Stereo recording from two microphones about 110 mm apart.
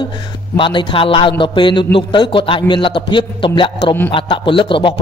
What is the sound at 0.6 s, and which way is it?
Speech, 50° left (ahead or behind).